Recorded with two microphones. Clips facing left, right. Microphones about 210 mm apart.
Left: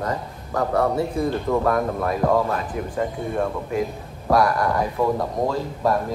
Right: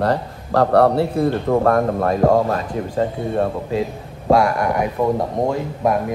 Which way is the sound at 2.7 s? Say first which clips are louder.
Right 4 dB; 30° right (ahead or behind).